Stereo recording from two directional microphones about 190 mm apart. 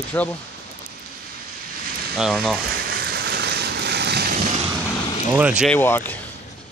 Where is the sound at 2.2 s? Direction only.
5° right (ahead or behind).